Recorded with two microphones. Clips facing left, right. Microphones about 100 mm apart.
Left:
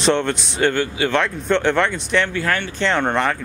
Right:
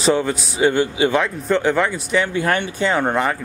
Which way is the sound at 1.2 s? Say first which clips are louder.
Even; 5° right (ahead or behind).